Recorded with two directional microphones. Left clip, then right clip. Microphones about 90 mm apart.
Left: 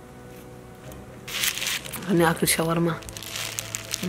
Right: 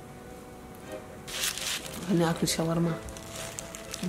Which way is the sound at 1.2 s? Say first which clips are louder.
Left 6 dB; 10° left (ahead or behind).